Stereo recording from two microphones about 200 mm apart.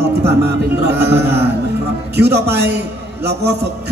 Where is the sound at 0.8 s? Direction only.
55° right (ahead or behind).